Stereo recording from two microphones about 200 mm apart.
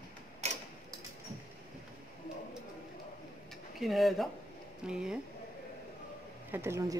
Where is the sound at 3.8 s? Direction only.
Centre (ahead or behind).